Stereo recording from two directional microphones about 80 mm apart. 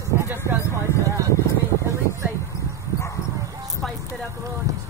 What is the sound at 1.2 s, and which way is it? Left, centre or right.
Speech, right.